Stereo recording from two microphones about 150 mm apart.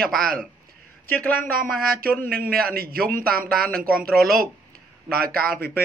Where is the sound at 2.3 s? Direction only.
90° right.